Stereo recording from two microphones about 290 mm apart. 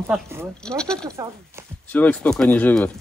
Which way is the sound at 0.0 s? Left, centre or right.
Centre.